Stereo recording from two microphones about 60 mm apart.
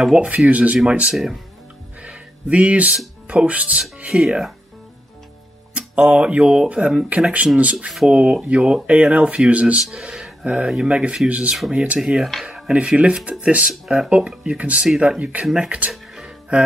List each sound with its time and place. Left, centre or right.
0.0 s speech: centre
1.1 s speech: centre
2.0 s a sound: right
3.3 s speech: right
4.1 s speech: centre
5.8 s speech: centre
7.7 s speech: centre
9.8 s speech: centre
10.4 s speech: right
12.0 s speech: centre; by 15.4 s right
15.4 s speech: centre
15.9 s music: centre